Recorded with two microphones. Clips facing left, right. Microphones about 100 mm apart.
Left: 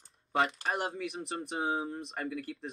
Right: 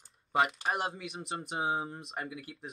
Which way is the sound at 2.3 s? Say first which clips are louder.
Left 6 dB; 15° right (ahead or behind).